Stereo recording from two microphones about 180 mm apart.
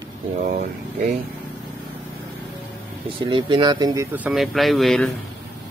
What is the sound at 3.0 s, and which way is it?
Speech, 30° right (ahead or behind).